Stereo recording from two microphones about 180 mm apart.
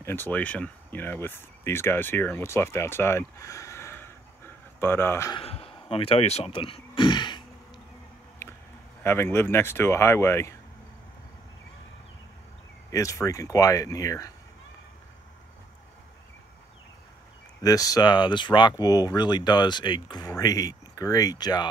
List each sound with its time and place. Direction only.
0.0 s speech: 10° left (ahead or behind)
5.3 s speech: 35° left (ahead or behind)
9.0 s speech: 15° left (ahead or behind)
12.9 s speech: 15° left (ahead or behind)
17.6 s speech: 20° left (ahead or behind)